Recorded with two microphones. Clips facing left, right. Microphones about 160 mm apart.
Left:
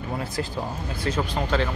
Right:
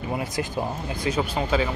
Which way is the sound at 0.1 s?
15° right (ahead or behind).